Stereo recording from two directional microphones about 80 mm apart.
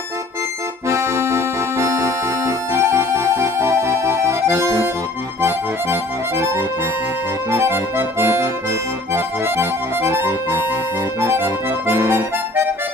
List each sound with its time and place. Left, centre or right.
0.8 s music: right
7.5 s accordion: right